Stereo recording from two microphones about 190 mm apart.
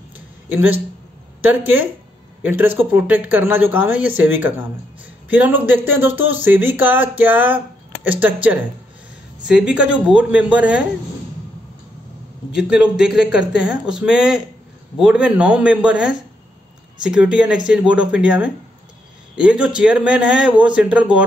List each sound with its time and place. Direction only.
0.5 s speech: 10° right (ahead or behind)
12.5 s speech: 5° right (ahead or behind)